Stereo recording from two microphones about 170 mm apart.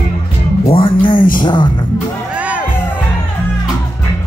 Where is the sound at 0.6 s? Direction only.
30° left (ahead or behind).